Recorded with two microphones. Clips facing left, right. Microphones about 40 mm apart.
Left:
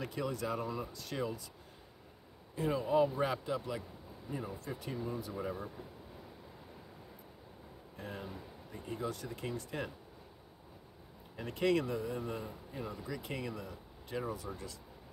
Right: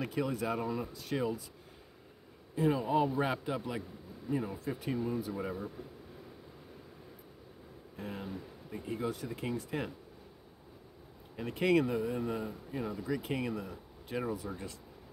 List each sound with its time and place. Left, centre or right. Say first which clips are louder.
0.0 s speech: right 3 dB; centre
2.5 s a man's voice: right 2 dB; centre
8.0 s speech: right 3 dB; centre
11.3 s speech: right 3 dB; centre